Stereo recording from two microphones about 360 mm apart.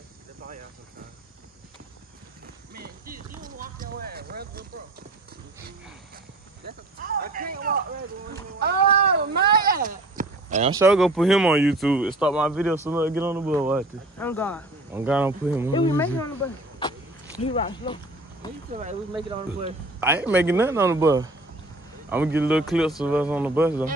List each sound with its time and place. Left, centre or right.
2.7 s a sound: right
3.4 s clip-clop: right
6.6 s speech: right
10.8 s speech: centre
15.0 s speech: centre
15.7 s speech: centre
17.4 s speech: centre
18.7 s speech: centre